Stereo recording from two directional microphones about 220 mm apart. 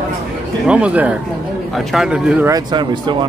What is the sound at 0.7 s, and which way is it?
A man's voice, 5° right (ahead or behind).